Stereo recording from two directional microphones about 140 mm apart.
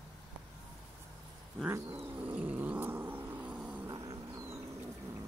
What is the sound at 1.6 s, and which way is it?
Cat, 15° right (ahead or behind).